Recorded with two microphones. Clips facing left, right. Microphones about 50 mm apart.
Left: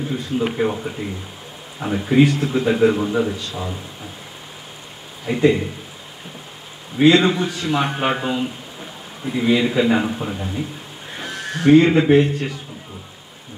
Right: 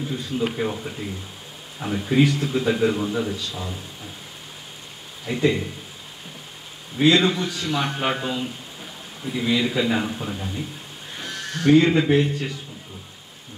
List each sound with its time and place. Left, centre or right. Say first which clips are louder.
0.2 s a man's voice: left 4 dB; centre
5.2 s a man's voice: left 5 dB; centre
7.0 s a man's voice: left 4 dB; centre
11.1 s goose: left 4 dB; left
11.8 s a man's voice: left 4 dB; centre